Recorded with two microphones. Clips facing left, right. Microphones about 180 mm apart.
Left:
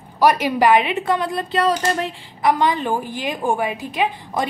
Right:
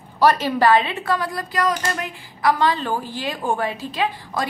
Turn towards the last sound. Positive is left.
turn(degrees=15)  # may be behind; listen again after turning